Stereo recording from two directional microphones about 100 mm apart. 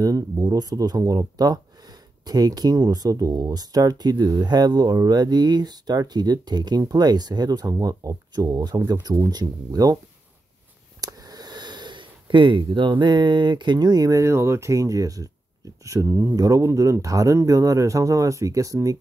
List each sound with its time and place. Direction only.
0.0 s speech: 40° right (ahead or behind)
11.0 s speech: 40° right (ahead or behind)